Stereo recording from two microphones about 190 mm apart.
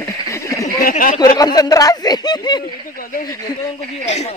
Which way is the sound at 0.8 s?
45° left (ahead or behind).